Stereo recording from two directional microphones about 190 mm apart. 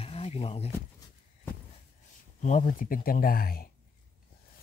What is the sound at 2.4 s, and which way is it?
Speech, 40° left (ahead or behind).